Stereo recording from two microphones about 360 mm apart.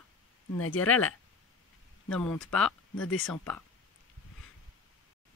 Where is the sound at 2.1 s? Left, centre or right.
Centre.